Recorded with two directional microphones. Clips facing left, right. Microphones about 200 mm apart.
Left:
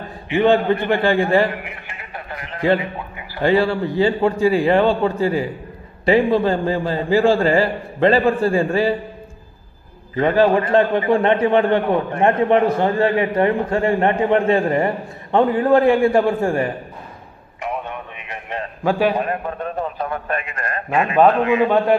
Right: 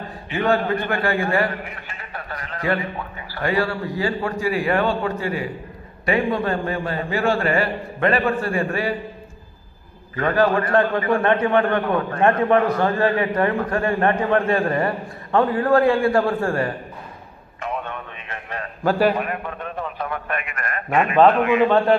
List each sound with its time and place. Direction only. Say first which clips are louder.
0.3 s a man's voice: left 5 dB; 25° left (ahead or behind)
1.9 s a sound: left 1 dB; 20° left (ahead or behind)
3.3 s a man's voice: left 6 dB; 25° left (ahead or behind)
10.1 s a man's voice: left 4 dB; 25° left (ahead or behind)
17.6 s a sound: left 2 dB; 15° left (ahead or behind)
18.9 s a man's voice: even; centre (ahead or behind)
19.1 s a man's voice: left 4 dB; 35° left (ahead or behind)
21.6 s a man's voice: even; 15° left (ahead or behind)